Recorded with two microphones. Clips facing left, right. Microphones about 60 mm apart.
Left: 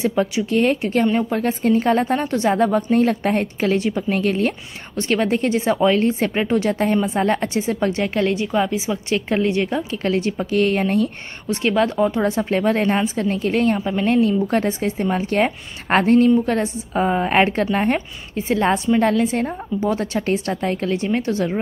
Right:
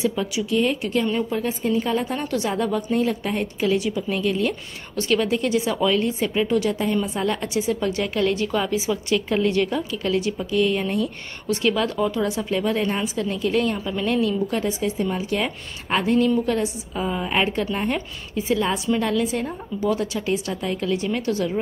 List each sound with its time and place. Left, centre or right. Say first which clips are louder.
0.0 s a woman's voice: left 4 dB; left
10.0 s a woman's voice: left 3 dB; left
11.4 s a woman's voice: left 3 dB; left
14.5 s a woman's voice: left 4 dB; left